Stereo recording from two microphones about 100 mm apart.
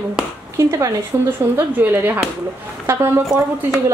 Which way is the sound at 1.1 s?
25° right (ahead or behind).